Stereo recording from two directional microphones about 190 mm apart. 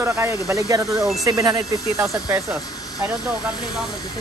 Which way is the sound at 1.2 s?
20° right (ahead or behind).